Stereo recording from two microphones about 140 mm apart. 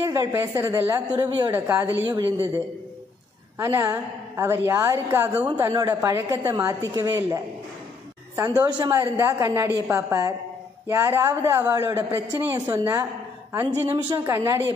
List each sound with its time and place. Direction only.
0.0 s a woman's voice: 25° right (ahead or behind)
1.5 s a woman's voice: 15° right (ahead or behind)
2.0 s a man's voice: 30° right (ahead or behind)
3.5 s a woman's voice: 20° right (ahead or behind)
8.6 s a woman's voice: 30° right (ahead or behind)